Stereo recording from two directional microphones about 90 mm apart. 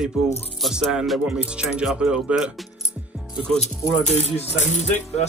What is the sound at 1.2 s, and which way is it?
Speech, 15° right (ahead or behind).